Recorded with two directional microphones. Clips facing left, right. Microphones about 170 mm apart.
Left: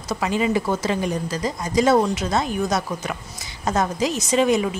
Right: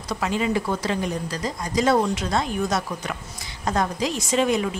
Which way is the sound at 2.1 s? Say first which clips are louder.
Left 2 dB; 5° left (ahead or behind).